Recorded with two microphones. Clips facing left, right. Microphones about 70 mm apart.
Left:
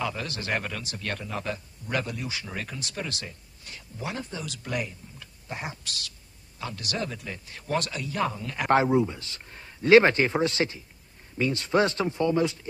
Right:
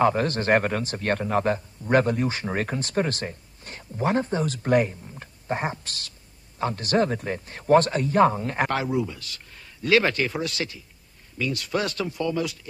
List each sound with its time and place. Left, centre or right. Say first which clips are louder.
0.0 s a man's voice: right 10 dB; right
8.6 s speech: left 8 dB; left